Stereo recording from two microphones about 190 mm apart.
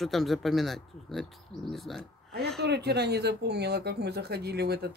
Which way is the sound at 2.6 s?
60° right (ahead or behind).